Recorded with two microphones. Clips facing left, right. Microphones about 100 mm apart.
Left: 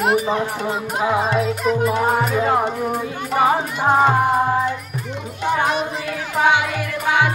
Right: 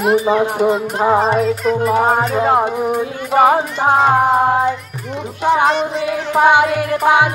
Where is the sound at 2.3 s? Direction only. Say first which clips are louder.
Right 4 dB; 30° right (ahead or behind).